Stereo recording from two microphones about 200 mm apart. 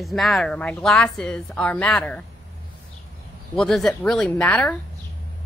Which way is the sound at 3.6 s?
Centre (ahead or behind).